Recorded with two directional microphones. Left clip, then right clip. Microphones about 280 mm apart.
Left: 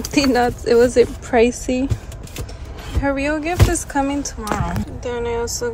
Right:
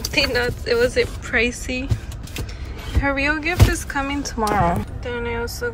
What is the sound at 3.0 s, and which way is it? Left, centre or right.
Speech, centre.